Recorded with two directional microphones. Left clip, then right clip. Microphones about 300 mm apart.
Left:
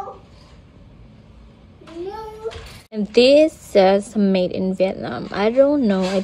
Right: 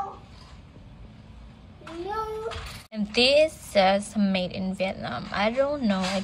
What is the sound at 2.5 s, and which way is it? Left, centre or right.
Speech, centre.